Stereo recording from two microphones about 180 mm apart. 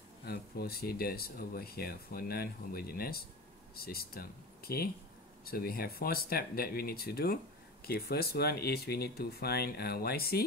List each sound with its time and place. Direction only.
0.2 s speech: 60° left (ahead or behind)